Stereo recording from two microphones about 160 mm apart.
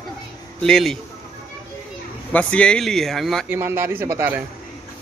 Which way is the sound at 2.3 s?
5° left (ahead or behind).